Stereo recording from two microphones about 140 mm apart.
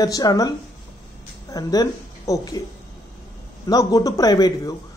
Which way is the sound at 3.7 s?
25° left (ahead or behind).